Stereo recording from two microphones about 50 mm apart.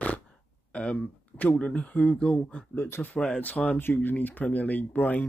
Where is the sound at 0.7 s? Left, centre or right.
Left.